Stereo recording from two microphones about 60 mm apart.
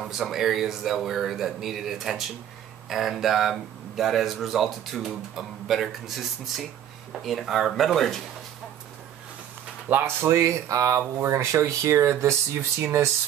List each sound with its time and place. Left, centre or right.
0.0 s speech: centre
9.9 s speech: right
10.2 s speech: right